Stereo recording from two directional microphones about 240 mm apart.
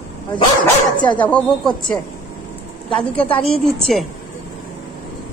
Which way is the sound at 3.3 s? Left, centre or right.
Left.